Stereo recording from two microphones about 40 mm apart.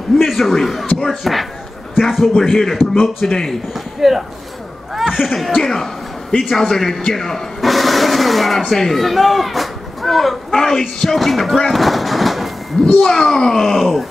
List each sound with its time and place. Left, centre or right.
0.2 s a man's voice: centre
2.4 s speech: centre
4.9 s a sound: centre
5.6 s a child's voice: centre
12.8 s a child's voice: centre
13.6 s speech: centre